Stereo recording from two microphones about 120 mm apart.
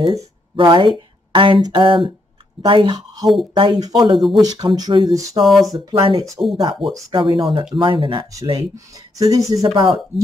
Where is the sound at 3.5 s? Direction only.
35° right (ahead or behind).